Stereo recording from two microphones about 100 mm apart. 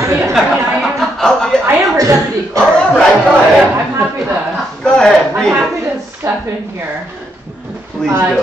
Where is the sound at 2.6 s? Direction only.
5° left (ahead or behind).